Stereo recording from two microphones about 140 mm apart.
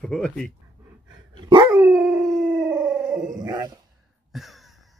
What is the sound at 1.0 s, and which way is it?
Dog, 35° right (ahead or behind).